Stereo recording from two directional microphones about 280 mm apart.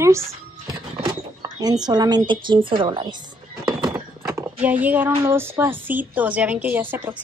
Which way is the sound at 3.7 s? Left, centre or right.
Centre.